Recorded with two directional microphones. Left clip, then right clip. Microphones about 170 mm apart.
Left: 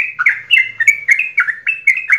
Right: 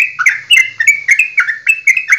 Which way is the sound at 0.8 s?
15° right (ahead or behind).